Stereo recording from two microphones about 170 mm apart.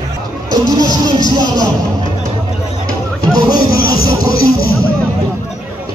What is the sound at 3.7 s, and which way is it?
Music, 60° left (ahead or behind).